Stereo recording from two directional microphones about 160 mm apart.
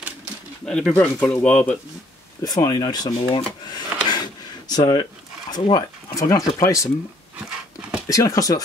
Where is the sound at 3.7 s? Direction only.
25° left (ahead or behind).